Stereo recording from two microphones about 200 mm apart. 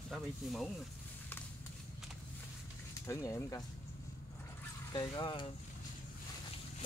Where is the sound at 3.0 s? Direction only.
15° left (ahead or behind).